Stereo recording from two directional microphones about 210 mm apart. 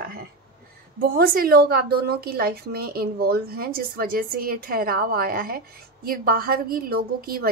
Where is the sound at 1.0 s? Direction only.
45° right (ahead or behind).